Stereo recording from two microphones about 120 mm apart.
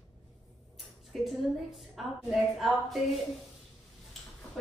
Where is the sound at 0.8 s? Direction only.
Centre (ahead or behind).